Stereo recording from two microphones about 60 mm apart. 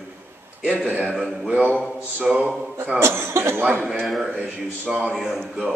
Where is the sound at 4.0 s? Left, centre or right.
Centre.